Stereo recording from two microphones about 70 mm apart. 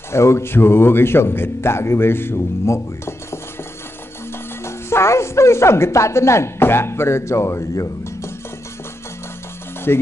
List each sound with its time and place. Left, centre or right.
0.1 s speech: left
4.6 s speech: left
9.9 s speech: left